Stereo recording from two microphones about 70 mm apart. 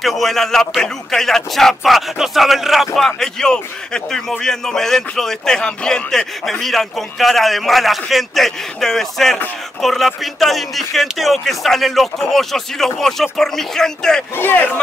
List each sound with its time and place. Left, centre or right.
0.0 s speech: centre
3.0 s speech: centre
14.3 s speech: left